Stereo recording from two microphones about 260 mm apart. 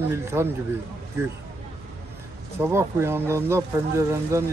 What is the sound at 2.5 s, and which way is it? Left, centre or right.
Speech, centre.